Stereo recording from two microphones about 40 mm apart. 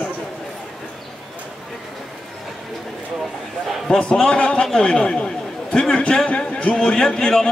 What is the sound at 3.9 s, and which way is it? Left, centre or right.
A man's voice, left.